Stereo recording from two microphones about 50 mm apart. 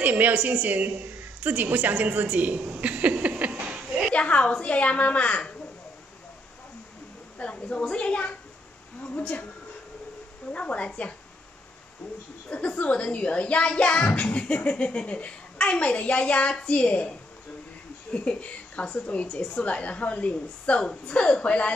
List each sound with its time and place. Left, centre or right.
0.0 s a woman's voice: right
4.1 s a woman's voice: left
7.3 s a woman's voice: left
10.5 s a woman's voice: left
12.4 s speech: left
18.1 s speech: left